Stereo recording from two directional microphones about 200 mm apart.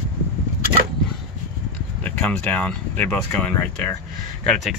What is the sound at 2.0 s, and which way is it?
Speech, 5° left (ahead or behind).